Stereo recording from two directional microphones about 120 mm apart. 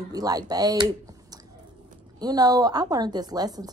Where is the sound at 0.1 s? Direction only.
30° right (ahead or behind).